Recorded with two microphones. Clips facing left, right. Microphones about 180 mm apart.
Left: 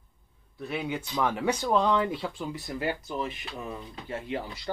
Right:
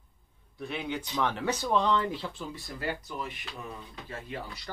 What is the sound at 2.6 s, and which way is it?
Speech, 25° left (ahead or behind).